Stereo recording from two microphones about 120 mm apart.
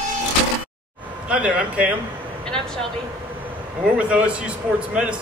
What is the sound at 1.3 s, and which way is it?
Speech, 10° right (ahead or behind).